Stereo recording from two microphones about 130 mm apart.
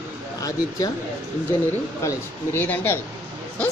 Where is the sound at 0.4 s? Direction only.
25° left (ahead or behind).